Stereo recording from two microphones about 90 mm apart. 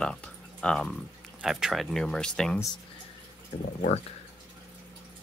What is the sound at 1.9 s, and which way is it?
Speech, 5° left (ahead or behind).